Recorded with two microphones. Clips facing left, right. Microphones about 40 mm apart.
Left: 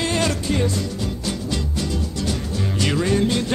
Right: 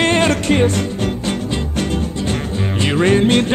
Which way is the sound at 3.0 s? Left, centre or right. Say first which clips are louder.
Right 9 dB; right.